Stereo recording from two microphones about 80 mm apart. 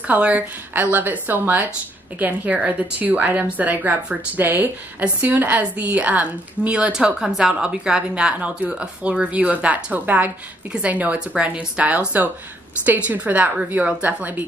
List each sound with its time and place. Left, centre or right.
0.0 s a woman's voice: centre